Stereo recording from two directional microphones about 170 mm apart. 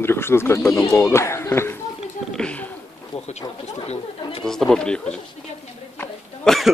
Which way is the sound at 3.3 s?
40° left (ahead or behind).